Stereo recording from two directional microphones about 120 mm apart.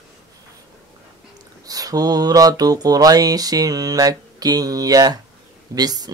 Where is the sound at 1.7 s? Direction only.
30° right (ahead or behind).